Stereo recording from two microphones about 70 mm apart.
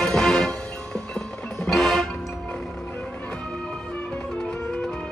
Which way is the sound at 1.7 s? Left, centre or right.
Centre.